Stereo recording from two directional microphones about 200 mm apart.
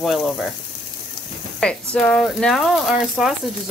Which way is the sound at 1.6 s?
5° left (ahead or behind).